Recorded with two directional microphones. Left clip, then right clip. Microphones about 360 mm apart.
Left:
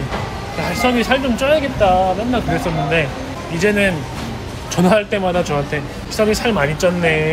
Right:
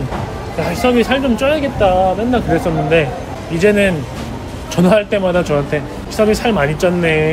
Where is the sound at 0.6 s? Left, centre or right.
Centre.